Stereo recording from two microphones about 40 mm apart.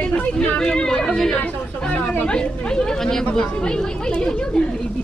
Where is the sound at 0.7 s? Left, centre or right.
Centre.